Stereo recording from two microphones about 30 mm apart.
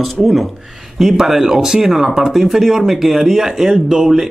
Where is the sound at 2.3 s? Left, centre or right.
Centre.